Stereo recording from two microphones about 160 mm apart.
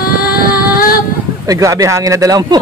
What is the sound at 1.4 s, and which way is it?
Speech, 20° right (ahead or behind).